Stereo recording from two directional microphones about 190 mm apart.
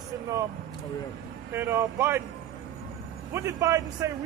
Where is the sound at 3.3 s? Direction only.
15° right (ahead or behind).